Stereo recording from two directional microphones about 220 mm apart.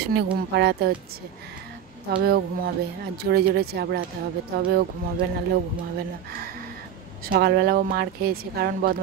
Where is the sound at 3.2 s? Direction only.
45° right (ahead or behind).